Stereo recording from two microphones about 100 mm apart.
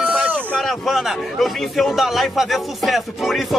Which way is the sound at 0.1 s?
15° right (ahead or behind).